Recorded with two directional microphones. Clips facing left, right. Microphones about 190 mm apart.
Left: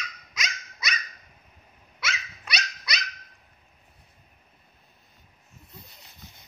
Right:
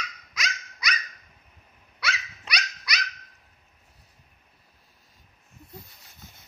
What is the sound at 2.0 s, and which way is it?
Dog, 25° left (ahead or behind).